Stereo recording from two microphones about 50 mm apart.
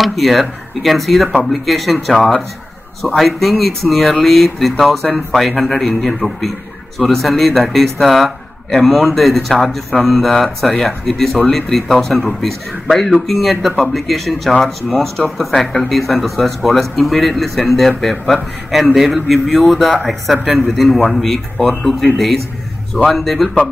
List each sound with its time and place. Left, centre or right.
0.0 s speech: centre